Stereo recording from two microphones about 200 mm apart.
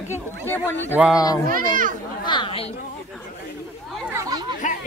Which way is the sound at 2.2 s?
25° left (ahead or behind).